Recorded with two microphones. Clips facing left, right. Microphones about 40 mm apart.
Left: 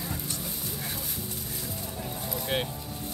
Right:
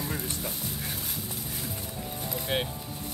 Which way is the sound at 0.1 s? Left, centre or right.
Right.